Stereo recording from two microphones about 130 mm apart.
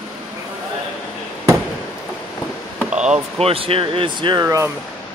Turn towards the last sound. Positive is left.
turn(degrees=-20)  # may be behind; listen again after turning